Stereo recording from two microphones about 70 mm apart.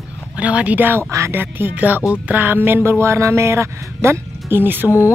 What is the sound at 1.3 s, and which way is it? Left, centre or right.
Speech, right.